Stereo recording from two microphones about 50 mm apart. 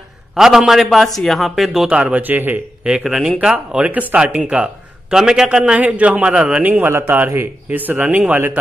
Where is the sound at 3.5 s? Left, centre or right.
Right.